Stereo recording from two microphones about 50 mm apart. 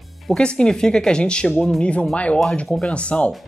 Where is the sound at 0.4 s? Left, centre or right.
Centre.